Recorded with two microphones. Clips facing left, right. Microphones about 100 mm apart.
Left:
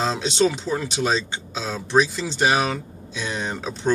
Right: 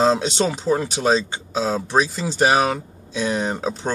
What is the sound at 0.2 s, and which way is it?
Speech, 35° right (ahead or behind).